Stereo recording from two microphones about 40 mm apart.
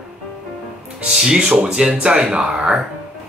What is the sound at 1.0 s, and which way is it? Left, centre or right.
Speech, centre.